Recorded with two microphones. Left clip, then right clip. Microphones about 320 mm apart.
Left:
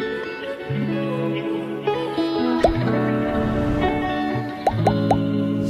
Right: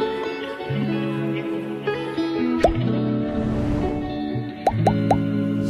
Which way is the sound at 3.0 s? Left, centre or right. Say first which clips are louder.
Left 3 dB; left.